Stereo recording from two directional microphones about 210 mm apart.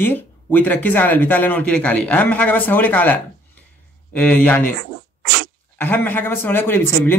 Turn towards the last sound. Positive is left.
turn(degrees=10)  # may be behind; listen again after turning